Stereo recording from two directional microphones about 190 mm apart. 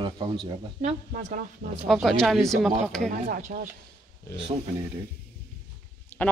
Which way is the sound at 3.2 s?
45° right (ahead or behind).